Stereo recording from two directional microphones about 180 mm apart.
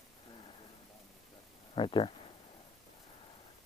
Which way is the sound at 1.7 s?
30° left (ahead or behind).